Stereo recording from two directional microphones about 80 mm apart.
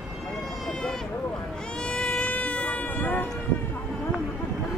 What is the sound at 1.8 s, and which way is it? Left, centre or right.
Baby cry, centre.